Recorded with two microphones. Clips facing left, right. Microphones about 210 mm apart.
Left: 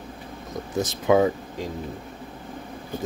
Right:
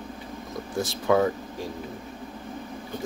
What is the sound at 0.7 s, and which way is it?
Speech, 20° left (ahead or behind).